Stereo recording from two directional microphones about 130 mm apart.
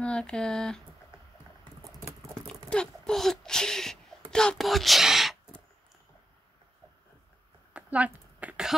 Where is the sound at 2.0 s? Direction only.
25° right (ahead or behind).